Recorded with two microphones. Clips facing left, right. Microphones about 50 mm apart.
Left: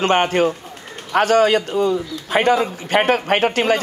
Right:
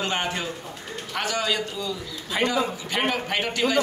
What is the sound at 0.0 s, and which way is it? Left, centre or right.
A man's voice, left.